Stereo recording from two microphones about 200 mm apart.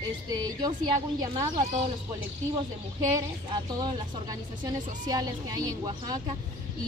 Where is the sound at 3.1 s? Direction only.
20° right (ahead or behind).